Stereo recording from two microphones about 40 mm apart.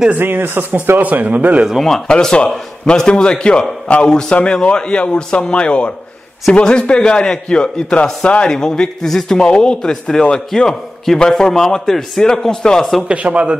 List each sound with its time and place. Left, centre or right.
0.2 s speech: right
1.0 s speech: right
1.8 s a man's voice: centre
2.0 s a man's voice: left
3.9 s speech: left
4.5 s a man's voice: left
8.5 s a man's voice: centre
13.1 s speech: right